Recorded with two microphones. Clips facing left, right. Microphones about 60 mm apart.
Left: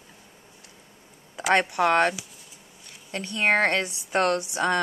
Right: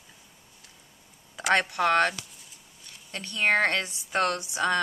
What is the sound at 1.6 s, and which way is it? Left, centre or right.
Speech, centre.